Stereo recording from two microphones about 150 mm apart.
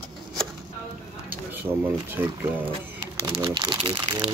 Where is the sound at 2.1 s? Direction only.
15° right (ahead or behind); by 4.3 s 30° right (ahead or behind).